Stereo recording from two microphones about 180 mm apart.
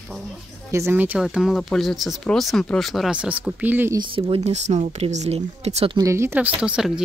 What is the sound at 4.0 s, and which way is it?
Speech, 30° right (ahead or behind).